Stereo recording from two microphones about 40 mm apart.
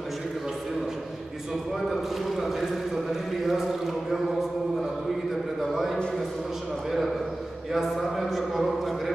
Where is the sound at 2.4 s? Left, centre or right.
Centre.